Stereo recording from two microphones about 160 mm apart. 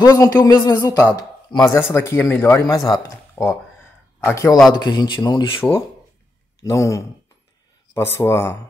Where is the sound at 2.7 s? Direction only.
25° left (ahead or behind).